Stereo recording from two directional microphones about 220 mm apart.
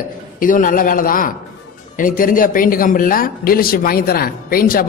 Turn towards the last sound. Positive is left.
turn(degrees=40)  # may be behind; listen again after turning